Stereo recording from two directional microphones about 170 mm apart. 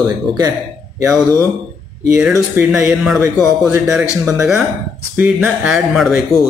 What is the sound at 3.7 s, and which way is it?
Speech, 10° right (ahead or behind).